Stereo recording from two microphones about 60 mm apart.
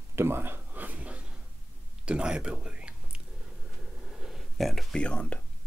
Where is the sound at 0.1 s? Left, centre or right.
Right.